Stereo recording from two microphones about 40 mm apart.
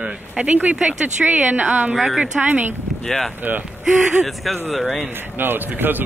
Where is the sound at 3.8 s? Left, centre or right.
Centre.